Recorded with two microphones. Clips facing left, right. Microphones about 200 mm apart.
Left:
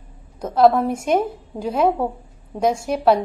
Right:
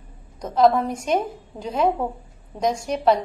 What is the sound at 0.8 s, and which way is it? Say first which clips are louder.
Speech: left 5 dB; 10° left (ahead or behind).